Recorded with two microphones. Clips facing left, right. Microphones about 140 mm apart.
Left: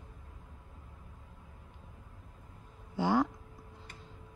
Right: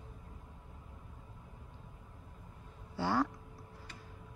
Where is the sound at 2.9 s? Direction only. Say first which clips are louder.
Left 4 dB; 15° left (ahead or behind).